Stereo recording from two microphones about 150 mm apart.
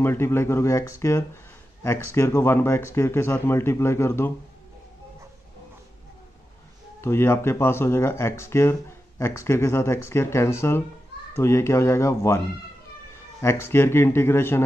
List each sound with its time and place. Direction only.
0.0 s speech: 15° left (ahead or behind)
7.0 s speech: 15° left (ahead or behind)
13.4 s speech: 15° left (ahead or behind)